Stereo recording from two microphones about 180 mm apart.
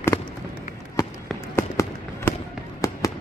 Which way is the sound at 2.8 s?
15° left (ahead or behind).